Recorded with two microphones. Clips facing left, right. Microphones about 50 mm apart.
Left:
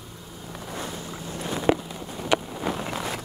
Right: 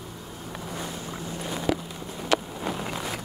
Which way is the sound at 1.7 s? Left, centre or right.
Left.